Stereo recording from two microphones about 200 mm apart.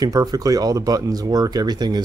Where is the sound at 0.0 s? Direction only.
20° right (ahead or behind).